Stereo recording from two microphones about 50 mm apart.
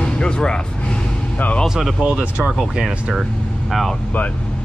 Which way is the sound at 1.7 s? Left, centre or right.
Centre.